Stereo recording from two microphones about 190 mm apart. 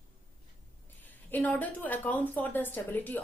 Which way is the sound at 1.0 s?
10° left (ahead or behind).